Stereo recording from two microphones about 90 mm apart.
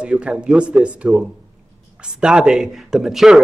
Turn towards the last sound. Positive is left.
turn(degrees=-5)  # may be behind; listen again after turning